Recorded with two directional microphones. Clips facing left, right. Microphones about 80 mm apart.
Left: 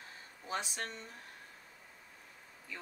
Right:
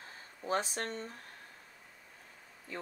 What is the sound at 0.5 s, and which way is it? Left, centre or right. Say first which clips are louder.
Speech: right 5 dB; right.